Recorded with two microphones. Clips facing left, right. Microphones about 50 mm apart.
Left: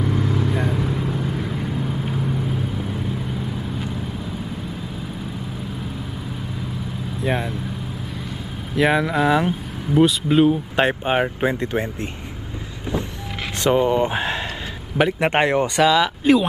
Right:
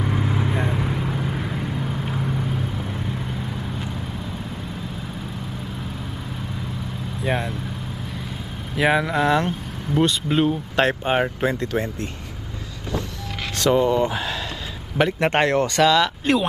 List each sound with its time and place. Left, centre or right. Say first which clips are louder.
0.0 s vehicle: left 2 dB; centre
7.2 s vehicle: left 1 dB; centre
8.7 s speech: left 1 dB; centre
11.5 s speech: left 1 dB; left
13.6 s speech: left 1 dB; left
15.0 s speech: left 1 dB; centre